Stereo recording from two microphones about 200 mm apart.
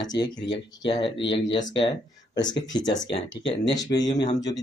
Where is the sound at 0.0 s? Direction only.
20° left (ahead or behind).